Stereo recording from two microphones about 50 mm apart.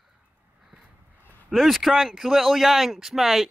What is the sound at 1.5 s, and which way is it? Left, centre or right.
Speech, centre.